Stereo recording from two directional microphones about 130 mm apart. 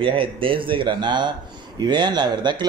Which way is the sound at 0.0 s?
40° right (ahead or behind).